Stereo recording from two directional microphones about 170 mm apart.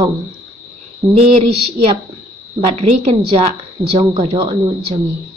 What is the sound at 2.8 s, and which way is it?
A woman's voice, 35° right (ahead or behind).